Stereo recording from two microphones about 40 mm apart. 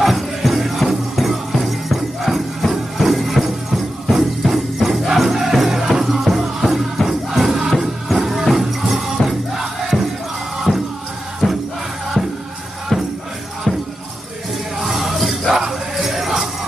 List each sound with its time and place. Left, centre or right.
0.0 s music: centre
11.4 s music: left
12.9 s music: centre
14.8 s music: centre